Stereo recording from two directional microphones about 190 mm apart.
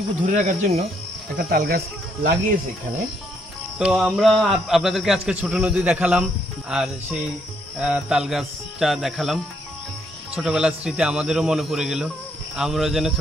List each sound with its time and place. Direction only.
0.2 s speech: 40° right (ahead or behind)
1.4 s speech: 55° right (ahead or behind)
3.7 s a man's voice: 5° right (ahead or behind)